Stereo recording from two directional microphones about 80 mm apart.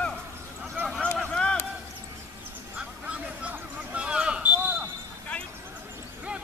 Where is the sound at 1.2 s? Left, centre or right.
Centre.